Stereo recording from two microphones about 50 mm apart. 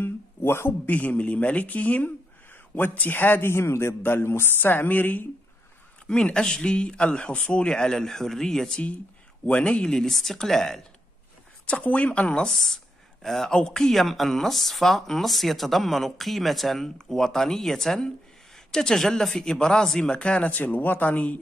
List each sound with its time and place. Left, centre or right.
0.0 s a sound: left
0.8 s a man's voice: left
4.0 s speech: left
6.0 s speech: centre
11.6 s speech: left
12.5 s speech: centre; by 21.4 s left